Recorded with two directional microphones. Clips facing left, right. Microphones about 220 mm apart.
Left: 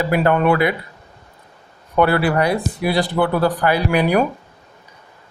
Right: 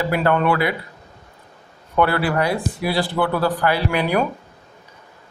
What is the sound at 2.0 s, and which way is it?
Speech, 15° left (ahead or behind).